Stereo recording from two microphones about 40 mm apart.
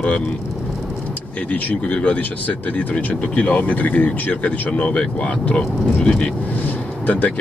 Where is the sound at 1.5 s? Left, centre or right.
Left.